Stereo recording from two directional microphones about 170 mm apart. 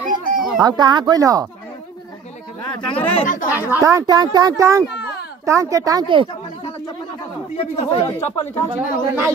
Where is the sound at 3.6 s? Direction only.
10° right (ahead or behind).